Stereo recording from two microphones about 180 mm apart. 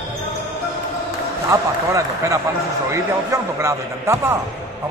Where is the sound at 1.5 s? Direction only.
15° right (ahead or behind).